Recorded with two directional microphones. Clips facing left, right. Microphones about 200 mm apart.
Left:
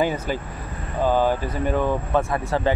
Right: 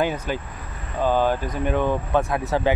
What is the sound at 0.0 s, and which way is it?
Speech, 10° left (ahead or behind).